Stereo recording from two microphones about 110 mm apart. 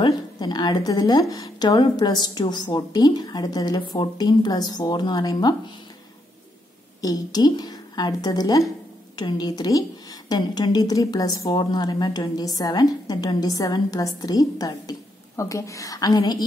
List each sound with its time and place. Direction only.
0.0 s speech: 40° left (ahead or behind)
7.0 s a woman's voice: 35° left (ahead or behind)